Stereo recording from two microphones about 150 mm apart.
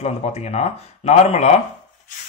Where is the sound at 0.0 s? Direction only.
45° left (ahead or behind).